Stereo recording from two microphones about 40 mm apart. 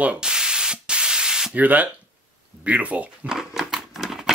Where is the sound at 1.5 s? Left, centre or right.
Right.